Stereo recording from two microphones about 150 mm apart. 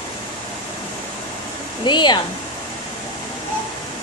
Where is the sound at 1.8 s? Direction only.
30° left (ahead or behind).